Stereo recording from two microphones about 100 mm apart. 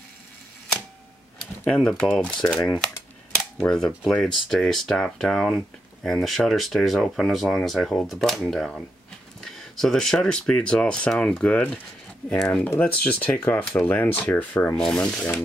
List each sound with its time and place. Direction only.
1.6 s speech: 10° left (ahead or behind)
12.6 s speech: 20° left (ahead or behind)
14.8 s speech: 5° left (ahead or behind)